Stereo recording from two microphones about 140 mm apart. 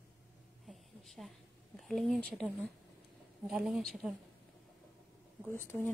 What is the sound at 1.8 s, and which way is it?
Speech, centre (ahead or behind).